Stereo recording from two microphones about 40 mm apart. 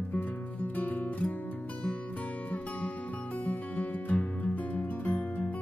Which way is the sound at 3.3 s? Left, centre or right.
Left.